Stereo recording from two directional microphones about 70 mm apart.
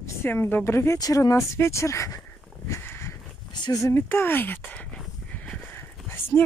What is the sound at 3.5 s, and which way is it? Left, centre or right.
Speech, left.